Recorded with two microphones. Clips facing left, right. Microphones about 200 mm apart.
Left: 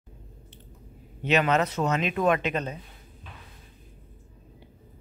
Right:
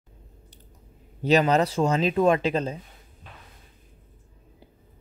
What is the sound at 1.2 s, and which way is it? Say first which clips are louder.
Speech: right 3 dB; 35° right (ahead or behind).